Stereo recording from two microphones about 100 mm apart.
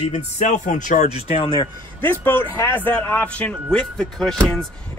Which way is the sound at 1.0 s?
90° left.